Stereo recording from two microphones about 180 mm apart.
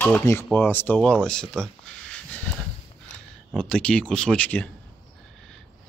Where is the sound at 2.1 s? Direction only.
5° left (ahead or behind).